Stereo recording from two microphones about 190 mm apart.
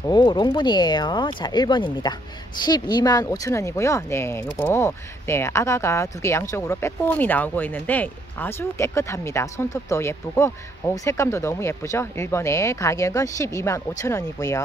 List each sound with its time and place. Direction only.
0.0 s speech: 20° left (ahead or behind)